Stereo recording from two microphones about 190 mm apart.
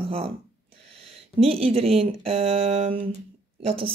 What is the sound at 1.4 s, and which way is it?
Speech, 30° right (ahead or behind).